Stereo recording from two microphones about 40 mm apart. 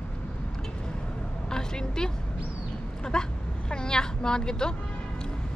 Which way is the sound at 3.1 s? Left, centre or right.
Centre.